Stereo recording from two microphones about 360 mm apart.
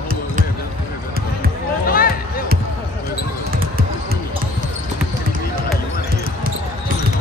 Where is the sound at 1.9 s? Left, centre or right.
Left.